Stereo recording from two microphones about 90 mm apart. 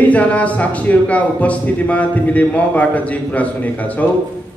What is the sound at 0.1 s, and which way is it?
A man's voice, 15° left (ahead or behind).